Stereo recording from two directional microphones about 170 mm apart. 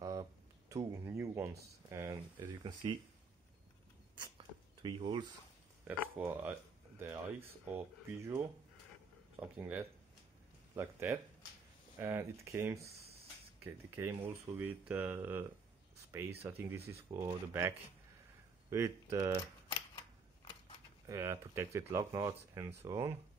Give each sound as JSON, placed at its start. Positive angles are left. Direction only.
{"t": 0.0, "sound": "a sound", "side_deg": -20}
{"t": 0.9, "sound": "speech", "side_deg": -15}
{"t": 2.6, "sound": "speech", "side_deg": -30}
{"t": 4.1, "sound": "a sound", "side_deg": -25}
{"t": 5.9, "sound": "speech", "side_deg": -10}
{"t": 9.6, "sound": "speech", "side_deg": -15}
{"t": 21.1, "sound": "speech", "side_deg": -15}